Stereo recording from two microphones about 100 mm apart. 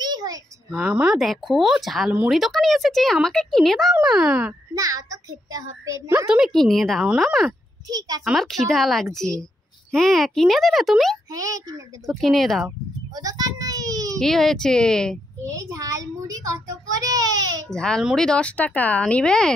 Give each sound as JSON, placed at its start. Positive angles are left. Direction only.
{"t": 0.0, "sound": "a sound", "side_deg": -40}
{"t": 0.8, "sound": "a woman's voice", "side_deg": -10}
{"t": 4.7, "sound": "a child's voice", "side_deg": -35}
{"t": 6.2, "sound": "a woman's voice", "side_deg": -5}
{"t": 11.3, "sound": "a child's voice", "side_deg": -35}
{"t": 12.1, "sound": "a woman's voice", "side_deg": 0}
{"t": 13.1, "sound": "a sound", "side_deg": -40}
{"t": 14.2, "sound": "a woman's voice", "side_deg": 5}
{"t": 15.5, "sound": "a child's voice", "side_deg": -35}
{"t": 17.6, "sound": "speech", "side_deg": 10}